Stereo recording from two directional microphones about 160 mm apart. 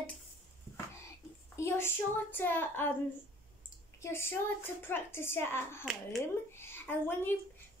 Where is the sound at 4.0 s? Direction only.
15° left (ahead or behind).